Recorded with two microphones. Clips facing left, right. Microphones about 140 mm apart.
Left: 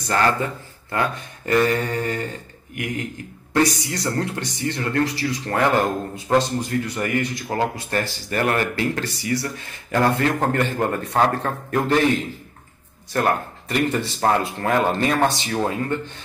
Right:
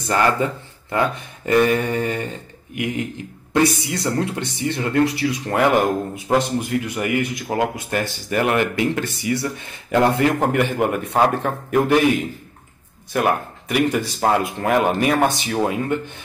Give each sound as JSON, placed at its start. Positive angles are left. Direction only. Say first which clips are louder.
{"t": 0.1, "sound": "a man's voice", "louder": "right 2 dB", "side_deg": -15}
{"t": 3.6, "sound": "speech", "louder": "right 3 dB", "side_deg": 20}
{"t": 4.0, "sound": "a man's voice", "louder": "right 2 dB", "side_deg": -20}